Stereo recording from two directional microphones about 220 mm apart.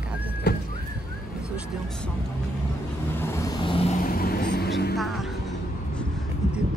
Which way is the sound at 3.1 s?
10° left (ahead or behind).